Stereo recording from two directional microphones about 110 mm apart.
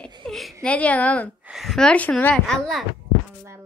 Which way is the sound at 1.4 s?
5° right (ahead or behind).